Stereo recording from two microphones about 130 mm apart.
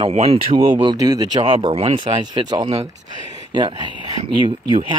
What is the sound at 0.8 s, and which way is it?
Speech, 30° right (ahead or behind).